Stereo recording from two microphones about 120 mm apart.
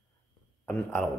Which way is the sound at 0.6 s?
10° left (ahead or behind).